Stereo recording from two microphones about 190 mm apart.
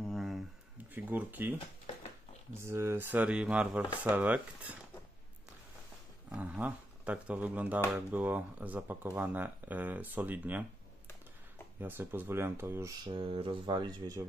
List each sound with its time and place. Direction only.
0.1 s a sound: centre (ahead or behind)
0.9 s speech: 10° right (ahead or behind)
2.6 s speech: 15° right (ahead or behind)
6.3 s speech: 5° right (ahead or behind)
11.8 s speech: 10° right (ahead or behind)
13.0 s speech: 25° right (ahead or behind)